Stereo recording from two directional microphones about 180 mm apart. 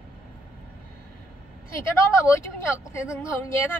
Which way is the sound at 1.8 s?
15° left (ahead or behind).